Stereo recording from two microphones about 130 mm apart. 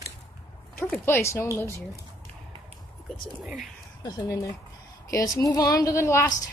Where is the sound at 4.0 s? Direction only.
30° left (ahead or behind).